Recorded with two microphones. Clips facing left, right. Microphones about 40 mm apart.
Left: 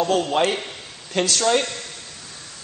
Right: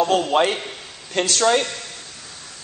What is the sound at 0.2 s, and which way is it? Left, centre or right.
Speech, centre.